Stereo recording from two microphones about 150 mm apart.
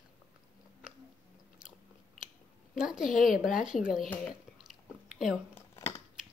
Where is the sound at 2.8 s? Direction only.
5° right (ahead or behind).